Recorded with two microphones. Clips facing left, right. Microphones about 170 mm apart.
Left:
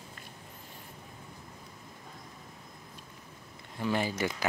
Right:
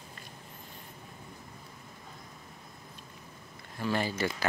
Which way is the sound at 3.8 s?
15° left (ahead or behind).